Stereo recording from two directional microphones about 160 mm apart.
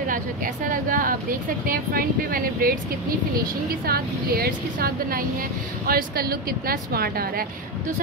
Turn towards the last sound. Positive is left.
turn(degrees=-70)  # may be behind; listen again after turning